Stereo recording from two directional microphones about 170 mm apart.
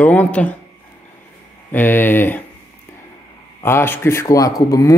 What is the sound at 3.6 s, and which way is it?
Speech, 15° left (ahead or behind).